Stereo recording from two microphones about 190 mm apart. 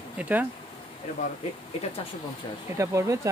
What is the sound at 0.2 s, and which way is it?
Speech, 10° right (ahead or behind).